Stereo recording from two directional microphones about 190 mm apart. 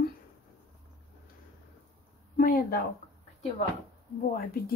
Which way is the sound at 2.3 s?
45° left (ahead or behind).